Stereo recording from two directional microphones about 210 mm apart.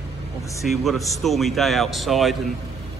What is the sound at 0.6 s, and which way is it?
A man's voice, centre (ahead or behind).